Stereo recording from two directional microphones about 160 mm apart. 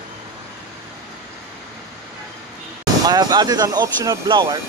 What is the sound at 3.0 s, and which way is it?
Speech, 25° right (ahead or behind).